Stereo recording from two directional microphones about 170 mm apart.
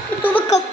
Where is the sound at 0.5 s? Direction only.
40° left (ahead or behind).